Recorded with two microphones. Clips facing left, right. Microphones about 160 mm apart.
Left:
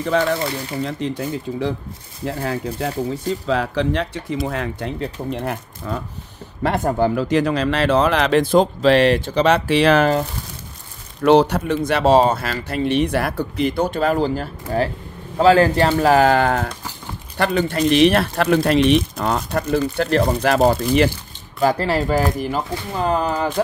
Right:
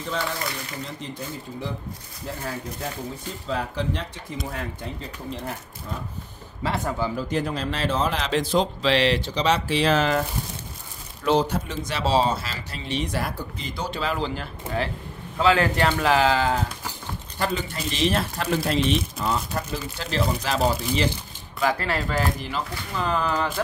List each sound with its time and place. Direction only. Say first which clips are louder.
0.0 s speech: left 10 dB; 65° left (ahead or behind)
6.6 s speech: left 8 dB; 50° left (ahead or behind)
7.2 s speech: left 8 dB; 90° left; by 10.0 s 65° left (ahead or behind)
11.2 s speech: left 8 dB; 70° left (ahead or behind); by 15.9 s 35° left (ahead or behind)
16.0 s speech: left 7 dB; 45° left (ahead or behind)
21.5 s speech: left 6 dB; 35° left (ahead or behind)